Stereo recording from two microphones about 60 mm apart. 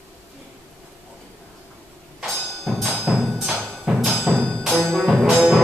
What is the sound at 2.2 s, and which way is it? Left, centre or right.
Music, centre.